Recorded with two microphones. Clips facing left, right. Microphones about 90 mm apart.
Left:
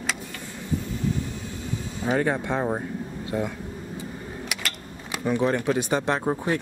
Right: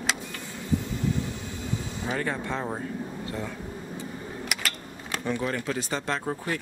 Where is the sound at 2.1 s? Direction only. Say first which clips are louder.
Left 6 dB; 20° left (ahead or behind).